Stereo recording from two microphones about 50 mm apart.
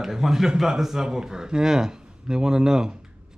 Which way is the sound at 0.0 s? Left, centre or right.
Centre.